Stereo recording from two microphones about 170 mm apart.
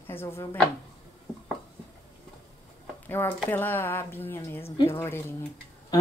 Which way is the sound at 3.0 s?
10° left (ahead or behind).